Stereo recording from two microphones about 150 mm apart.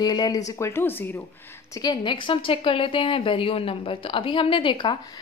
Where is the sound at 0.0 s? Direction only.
25° left (ahead or behind).